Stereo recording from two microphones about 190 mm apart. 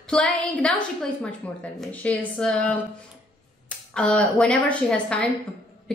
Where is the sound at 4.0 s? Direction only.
5° left (ahead or behind).